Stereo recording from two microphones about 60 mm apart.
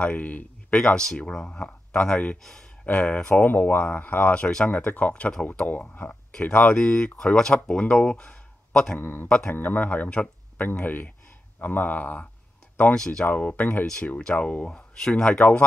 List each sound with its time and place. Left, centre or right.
0.0 s speech: left
4.3 s speech: centre
4.6 s speech: left; by 9.0 s centre
9.0 s speech: left
12.9 s speech: centre
13.2 s speech: left
14.2 s speech: centre